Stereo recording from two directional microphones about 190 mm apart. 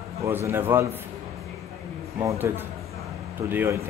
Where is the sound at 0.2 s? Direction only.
15° right (ahead or behind).